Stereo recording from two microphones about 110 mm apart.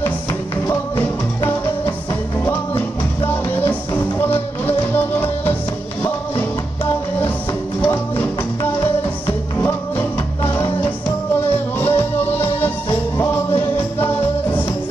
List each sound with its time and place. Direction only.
0.7 s music: 25° left (ahead or behind)
3.5 s music: 20° left (ahead or behind)
9.6 s music: 20° left (ahead or behind)
11.8 s music: 20° left (ahead or behind)